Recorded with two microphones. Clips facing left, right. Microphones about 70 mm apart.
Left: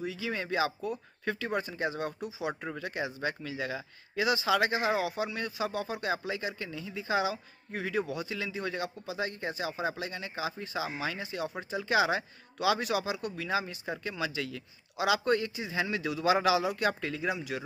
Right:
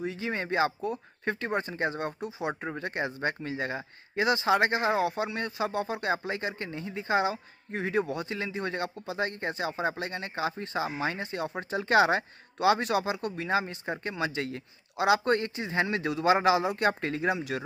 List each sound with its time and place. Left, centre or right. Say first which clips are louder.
0.0 s speech: right 2 dB; right